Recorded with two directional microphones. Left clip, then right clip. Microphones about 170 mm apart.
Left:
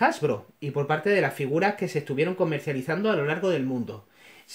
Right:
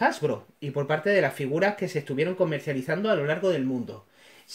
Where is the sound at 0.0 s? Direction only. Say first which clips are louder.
Left 1 dB; 20° left (ahead or behind).